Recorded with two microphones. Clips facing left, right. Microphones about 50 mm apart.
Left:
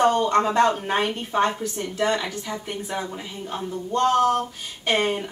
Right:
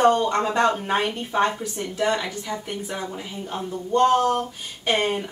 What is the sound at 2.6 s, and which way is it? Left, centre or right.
Speech, centre.